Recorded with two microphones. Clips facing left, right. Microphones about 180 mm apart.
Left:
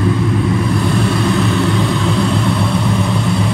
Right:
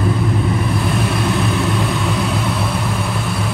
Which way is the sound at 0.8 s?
Centre (ahead or behind).